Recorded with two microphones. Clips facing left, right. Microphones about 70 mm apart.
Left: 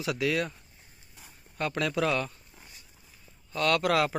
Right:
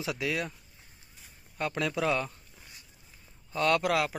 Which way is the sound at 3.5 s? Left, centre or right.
Centre.